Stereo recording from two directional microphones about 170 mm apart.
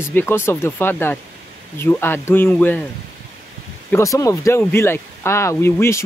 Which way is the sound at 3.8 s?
15° left (ahead or behind).